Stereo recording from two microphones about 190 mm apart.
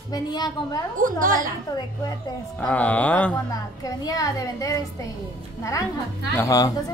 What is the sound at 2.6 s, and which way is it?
Speech, 10° left (ahead or behind).